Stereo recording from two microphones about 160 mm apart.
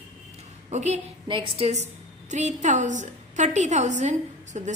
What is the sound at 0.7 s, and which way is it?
Speech, 45° right (ahead or behind).